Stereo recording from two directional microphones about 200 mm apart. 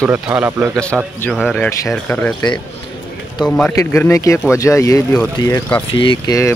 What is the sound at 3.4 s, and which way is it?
Speech, 5° left (ahead or behind).